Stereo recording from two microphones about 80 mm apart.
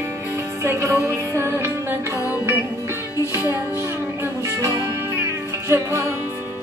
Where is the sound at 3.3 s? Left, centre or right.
Right.